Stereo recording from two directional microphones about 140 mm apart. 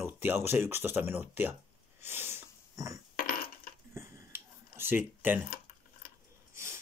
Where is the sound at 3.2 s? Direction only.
80° left.